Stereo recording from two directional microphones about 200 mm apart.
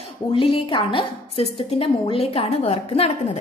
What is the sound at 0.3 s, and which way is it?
A woman's voice, 25° left (ahead or behind).